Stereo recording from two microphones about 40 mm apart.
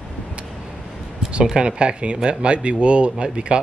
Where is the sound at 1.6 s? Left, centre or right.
Right.